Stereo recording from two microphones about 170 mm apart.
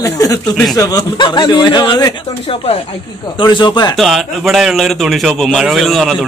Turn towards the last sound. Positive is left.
turn(degrees=0)  # may be behind; listen again after turning